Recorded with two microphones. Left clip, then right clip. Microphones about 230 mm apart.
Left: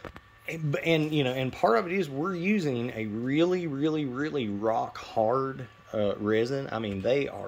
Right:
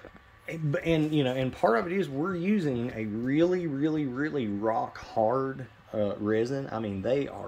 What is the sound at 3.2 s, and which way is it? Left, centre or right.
Speech, centre.